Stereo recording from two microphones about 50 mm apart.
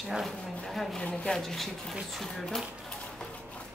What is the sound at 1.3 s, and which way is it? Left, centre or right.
Speech, centre.